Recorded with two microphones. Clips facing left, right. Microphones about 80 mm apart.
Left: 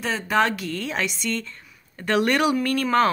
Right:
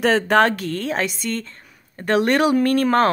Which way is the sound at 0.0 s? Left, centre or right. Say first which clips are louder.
Right 6 dB; right.